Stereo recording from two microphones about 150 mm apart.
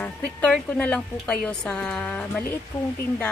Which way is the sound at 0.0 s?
10° left (ahead or behind).